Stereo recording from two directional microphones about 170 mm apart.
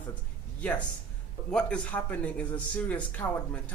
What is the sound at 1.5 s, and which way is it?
A man's voice, 5° left (ahead or behind).